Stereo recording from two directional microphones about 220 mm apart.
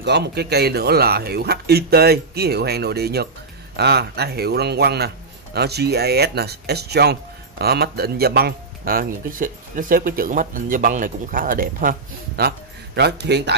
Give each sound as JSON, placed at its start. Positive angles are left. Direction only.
{"t": 0.0, "sound": "a man's voice", "side_deg": -50}